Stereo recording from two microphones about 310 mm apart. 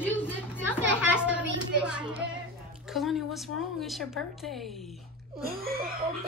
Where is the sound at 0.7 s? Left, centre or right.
Centre.